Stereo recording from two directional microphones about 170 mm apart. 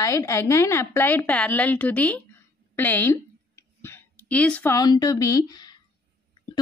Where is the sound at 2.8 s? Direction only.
10° left (ahead or behind).